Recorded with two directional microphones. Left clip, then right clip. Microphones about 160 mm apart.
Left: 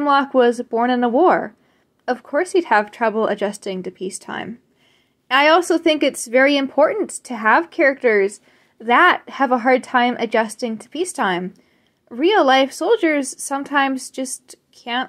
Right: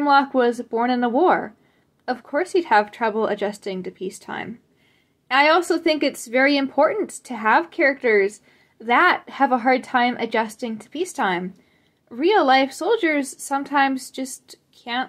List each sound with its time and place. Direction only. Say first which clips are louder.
0.0 s speech: left 2 dB; 30° left (ahead or behind)